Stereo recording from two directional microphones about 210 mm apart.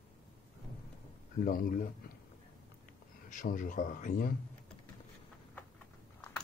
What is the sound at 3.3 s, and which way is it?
Speech, 40° left (ahead or behind).